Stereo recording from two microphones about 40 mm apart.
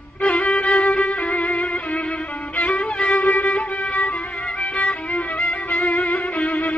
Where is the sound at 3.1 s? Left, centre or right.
Left.